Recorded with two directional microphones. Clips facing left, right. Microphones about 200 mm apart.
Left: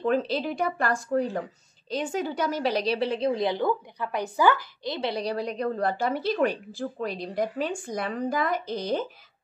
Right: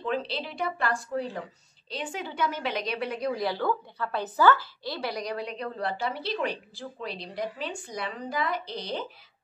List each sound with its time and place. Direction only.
0.0 s a woman's voice: 45° left (ahead or behind)